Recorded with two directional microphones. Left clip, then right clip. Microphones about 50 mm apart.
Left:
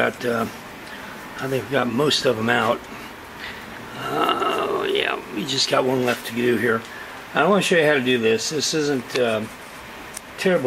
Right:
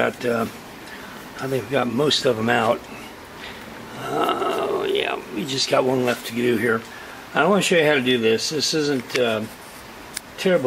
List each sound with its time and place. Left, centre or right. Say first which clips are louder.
0.0 s speech: even; right
1.5 s speech: even; centre
2.2 s speech: even; right
4.0 s a sound: left 1 dB; centre
5.4 s speech: even; right
8.2 s speech: even; right